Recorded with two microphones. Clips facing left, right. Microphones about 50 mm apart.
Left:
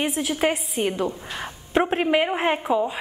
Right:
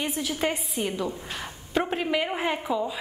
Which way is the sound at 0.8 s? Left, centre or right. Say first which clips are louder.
Left 5 dB; left.